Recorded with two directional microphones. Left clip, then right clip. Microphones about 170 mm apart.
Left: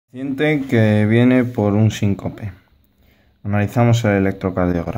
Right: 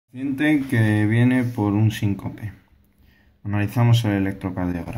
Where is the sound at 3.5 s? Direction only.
55° left (ahead or behind).